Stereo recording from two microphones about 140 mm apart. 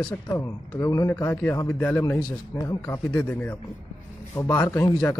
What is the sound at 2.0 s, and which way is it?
Speech, 30° left (ahead or behind).